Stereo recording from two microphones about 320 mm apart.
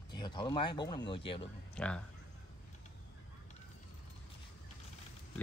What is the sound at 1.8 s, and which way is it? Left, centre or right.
Speech, centre.